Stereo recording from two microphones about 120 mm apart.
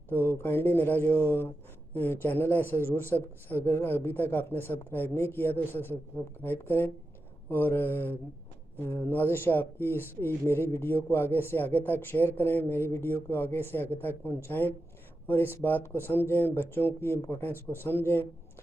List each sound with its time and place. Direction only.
0.1 s speech: 15° left (ahead or behind)